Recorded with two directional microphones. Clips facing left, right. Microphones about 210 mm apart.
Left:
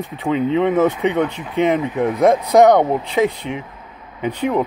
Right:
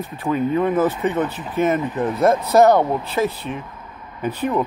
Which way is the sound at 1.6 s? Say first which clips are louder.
Left 2 dB; 15° left (ahead or behind).